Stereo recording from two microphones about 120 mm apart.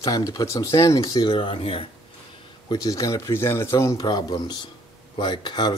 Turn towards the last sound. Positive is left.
turn(degrees=40)  # may be behind; listen again after turning